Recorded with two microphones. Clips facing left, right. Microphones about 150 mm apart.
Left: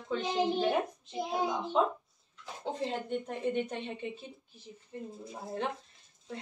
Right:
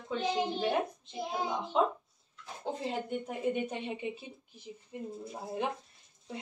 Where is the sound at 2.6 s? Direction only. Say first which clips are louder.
Even; 5° right (ahead or behind).